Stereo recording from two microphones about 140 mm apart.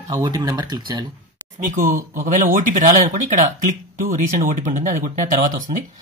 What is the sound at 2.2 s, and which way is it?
Speech, 65° right (ahead or behind).